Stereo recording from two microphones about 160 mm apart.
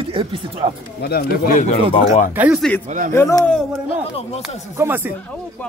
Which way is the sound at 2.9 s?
50° right (ahead or behind).